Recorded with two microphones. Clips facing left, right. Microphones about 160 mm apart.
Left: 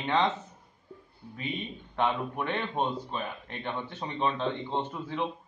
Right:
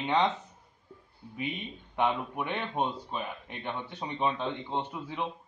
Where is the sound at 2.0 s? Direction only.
10° right (ahead or behind).